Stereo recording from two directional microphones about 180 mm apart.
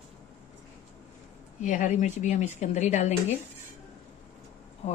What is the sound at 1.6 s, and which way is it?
Speech, 40° left (ahead or behind).